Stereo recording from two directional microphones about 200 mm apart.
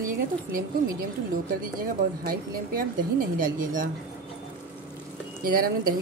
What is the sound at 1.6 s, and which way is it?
Speech, 45° right (ahead or behind).